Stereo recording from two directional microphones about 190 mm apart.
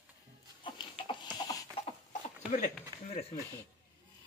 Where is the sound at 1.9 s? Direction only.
40° left (ahead or behind).